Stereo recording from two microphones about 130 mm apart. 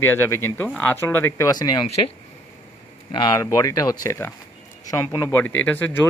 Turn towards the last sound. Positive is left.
turn(degrees=15)  # may be behind; listen again after turning